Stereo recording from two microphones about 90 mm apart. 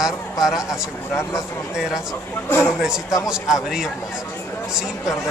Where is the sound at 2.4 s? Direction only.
25° left (ahead or behind).